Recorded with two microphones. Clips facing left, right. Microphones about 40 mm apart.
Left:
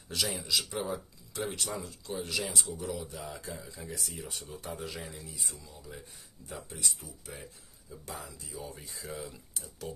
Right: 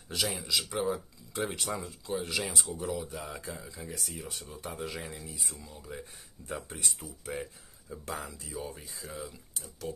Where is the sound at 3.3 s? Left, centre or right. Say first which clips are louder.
Right 1 dB; right.